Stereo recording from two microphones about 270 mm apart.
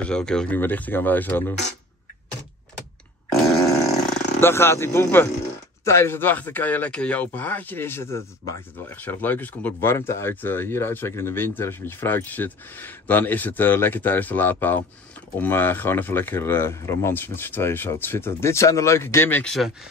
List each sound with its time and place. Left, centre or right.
0.0 s speech: centre
4.4 s speech: centre